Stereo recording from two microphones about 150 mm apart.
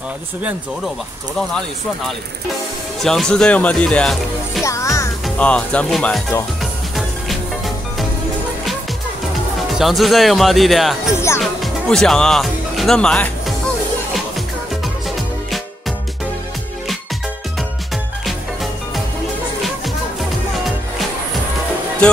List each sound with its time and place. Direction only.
3.0 s speech: 5° left (ahead or behind)
4.6 s music: 20° left (ahead or behind)
5.2 s speech: 10° left (ahead or behind)
6.6 s music: centre (ahead or behind)
9.8 s speech: centre (ahead or behind)
11.1 s speech: 20° left (ahead or behind)
11.6 s speech: centre (ahead or behind)